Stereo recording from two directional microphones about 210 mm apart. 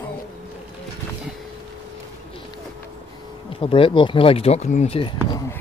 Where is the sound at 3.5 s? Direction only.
25° left (ahead or behind).